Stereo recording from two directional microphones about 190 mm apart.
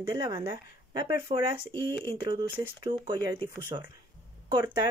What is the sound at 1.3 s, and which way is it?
Speech, 35° right (ahead or behind).